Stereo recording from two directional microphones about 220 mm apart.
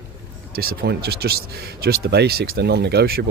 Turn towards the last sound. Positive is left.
turn(degrees=-45)  # may be behind; listen again after turning